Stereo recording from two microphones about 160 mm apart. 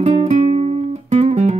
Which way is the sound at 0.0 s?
45° right (ahead or behind).